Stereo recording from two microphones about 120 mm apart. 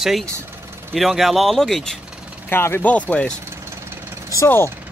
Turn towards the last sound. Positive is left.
turn(degrees=20)  # may be behind; listen again after turning